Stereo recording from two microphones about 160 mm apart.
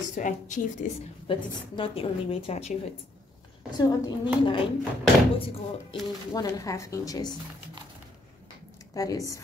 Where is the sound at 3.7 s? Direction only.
20° left (ahead or behind).